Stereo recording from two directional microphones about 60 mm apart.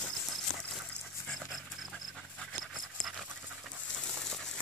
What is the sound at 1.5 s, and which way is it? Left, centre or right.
Dog, centre.